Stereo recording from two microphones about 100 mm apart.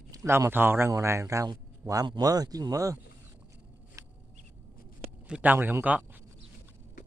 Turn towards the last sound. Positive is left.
turn(degrees=-20)  # may be behind; listen again after turning